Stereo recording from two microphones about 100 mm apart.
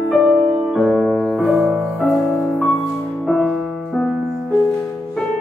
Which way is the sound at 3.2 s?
Centre (ahead or behind).